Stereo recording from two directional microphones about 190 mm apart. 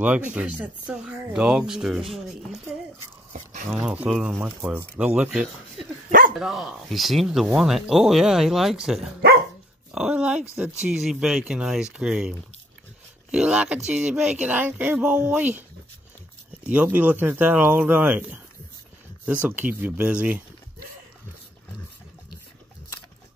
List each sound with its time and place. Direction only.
0.0 s speech: 10° right (ahead or behind)
3.7 s speech: 5° right (ahead or behind)
6.0 s dog: 45° right (ahead or behind)
6.3 s speech: centre (ahead or behind)
16.6 s speech: 10° right (ahead or behind)
19.4 s speech: 10° right (ahead or behind)